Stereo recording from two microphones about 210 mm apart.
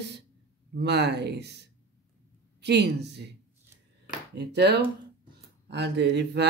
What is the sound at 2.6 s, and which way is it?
Speech, 55° right (ahead or behind).